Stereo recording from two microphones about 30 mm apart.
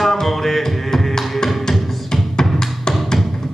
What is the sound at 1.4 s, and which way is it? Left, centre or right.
Music, centre.